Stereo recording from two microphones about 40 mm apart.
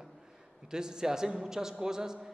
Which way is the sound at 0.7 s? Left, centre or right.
Centre.